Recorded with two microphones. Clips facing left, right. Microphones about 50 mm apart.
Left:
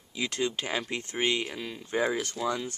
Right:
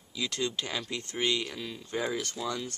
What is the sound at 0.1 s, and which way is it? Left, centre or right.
Speech, left.